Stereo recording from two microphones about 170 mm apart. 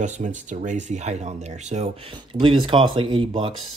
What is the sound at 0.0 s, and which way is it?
Speech, 45° right (ahead or behind).